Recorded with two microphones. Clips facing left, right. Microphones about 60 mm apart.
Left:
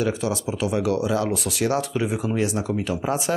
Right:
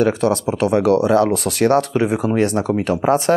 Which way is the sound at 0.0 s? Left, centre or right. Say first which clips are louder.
Right 8 dB; right.